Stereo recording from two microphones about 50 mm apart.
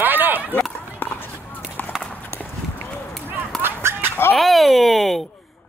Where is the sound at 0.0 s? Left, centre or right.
Right.